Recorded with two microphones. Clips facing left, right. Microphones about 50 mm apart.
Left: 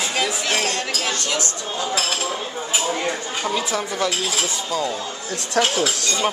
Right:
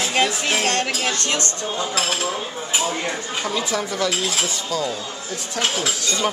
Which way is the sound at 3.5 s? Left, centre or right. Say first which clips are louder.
Even; centre.